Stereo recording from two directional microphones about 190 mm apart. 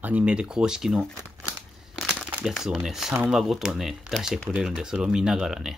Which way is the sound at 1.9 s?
Centre (ahead or behind).